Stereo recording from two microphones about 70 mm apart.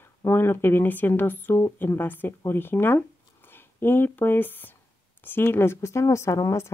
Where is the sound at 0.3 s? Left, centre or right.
Left.